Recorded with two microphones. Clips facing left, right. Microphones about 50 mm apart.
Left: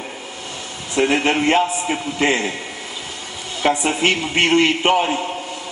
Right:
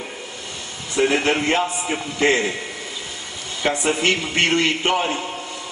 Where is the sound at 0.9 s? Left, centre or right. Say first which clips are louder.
Left 1 dB; centre.